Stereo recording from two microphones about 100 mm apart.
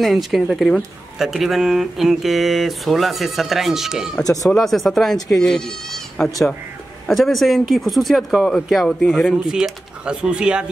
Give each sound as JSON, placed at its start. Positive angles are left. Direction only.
{"t": 0.0, "sound": "speech", "side_deg": 0}
{"t": 4.2, "sound": "speech", "side_deg": 35}
{"t": 4.5, "sound": "speech", "side_deg": 0}